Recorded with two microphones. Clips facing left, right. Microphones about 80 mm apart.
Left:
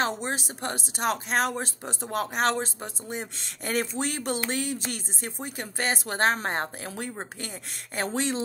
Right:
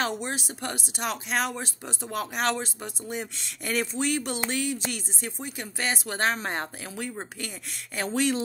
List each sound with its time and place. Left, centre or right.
0.0 s speech: left